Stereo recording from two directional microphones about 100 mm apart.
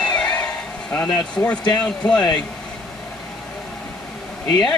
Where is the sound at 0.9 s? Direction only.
20° left (ahead or behind).